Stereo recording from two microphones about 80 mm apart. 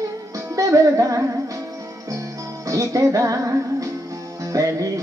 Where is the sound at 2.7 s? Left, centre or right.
Right.